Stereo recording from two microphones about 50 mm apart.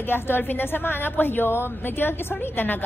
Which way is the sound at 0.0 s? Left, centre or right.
Left.